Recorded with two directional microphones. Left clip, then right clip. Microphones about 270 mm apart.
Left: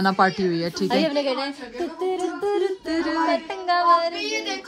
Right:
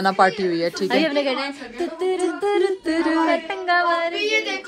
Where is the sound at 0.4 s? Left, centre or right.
Left.